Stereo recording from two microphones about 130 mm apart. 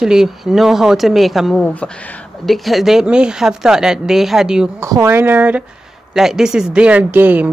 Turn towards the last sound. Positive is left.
turn(degrees=-15)  # may be behind; listen again after turning